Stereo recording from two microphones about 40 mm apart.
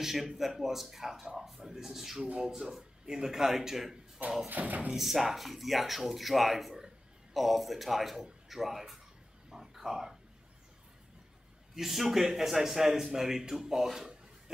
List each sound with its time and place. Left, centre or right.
0.0 s a man's voice: centre
4.5 s music: right
4.9 s speech: centre
9.5 s a sound: centre
11.7 s a man's voice: centre